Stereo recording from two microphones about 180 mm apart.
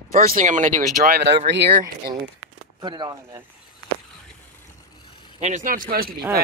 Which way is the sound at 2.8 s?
25° right (ahead or behind).